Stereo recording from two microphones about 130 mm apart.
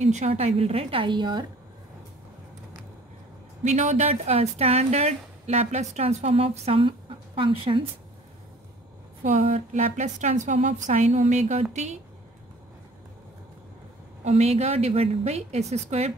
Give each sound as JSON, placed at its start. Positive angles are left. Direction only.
{"t": 0.0, "sound": "a woman's voice", "side_deg": -65}
{"t": 3.6, "sound": "a woman's voice", "side_deg": -65}
{"t": 4.3, "sound": "a woman's voice", "side_deg": -50}
{"t": 9.2, "sound": "a woman's voice", "side_deg": -70}
{"t": 14.2, "sound": "a woman's voice", "side_deg": -55}